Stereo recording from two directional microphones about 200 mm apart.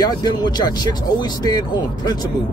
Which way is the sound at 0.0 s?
20° left (ahead or behind).